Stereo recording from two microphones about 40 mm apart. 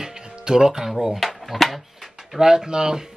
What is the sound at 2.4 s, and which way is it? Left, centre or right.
Speech, centre.